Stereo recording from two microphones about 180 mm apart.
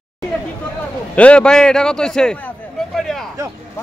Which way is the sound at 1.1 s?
5° left (ahead or behind).